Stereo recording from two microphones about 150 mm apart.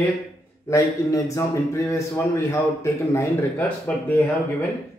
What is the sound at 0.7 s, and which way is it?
A man's voice, 20° left (ahead or behind).